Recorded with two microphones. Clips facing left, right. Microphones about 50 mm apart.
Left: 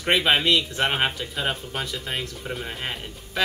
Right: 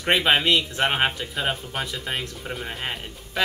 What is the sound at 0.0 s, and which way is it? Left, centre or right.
Speech, centre.